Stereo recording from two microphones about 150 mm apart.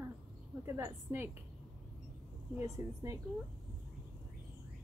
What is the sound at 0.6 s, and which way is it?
Speech, 15° right (ahead or behind).